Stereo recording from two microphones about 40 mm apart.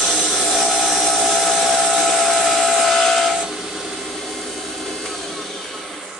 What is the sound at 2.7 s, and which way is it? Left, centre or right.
Steam, centre.